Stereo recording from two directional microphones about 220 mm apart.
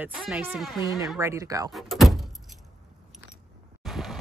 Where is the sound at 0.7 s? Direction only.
15° left (ahead or behind).